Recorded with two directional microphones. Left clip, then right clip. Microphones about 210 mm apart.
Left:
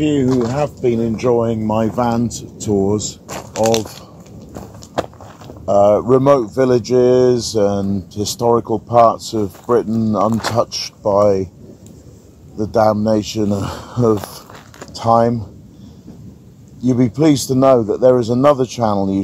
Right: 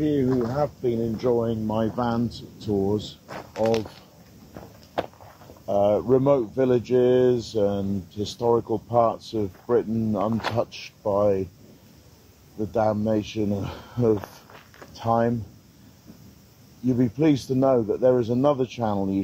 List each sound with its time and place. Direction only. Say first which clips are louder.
0.0 s speech: left 7 dB; 5° left (ahead or behind)
5.0 s walk: left 7 dB; 10° right (ahead or behind)
5.7 s speech: left 9 dB; 10° right (ahead or behind)
12.5 s speech: left 9 dB; 5° right (ahead or behind)
16.8 s speech: left 8 dB; 5° right (ahead or behind)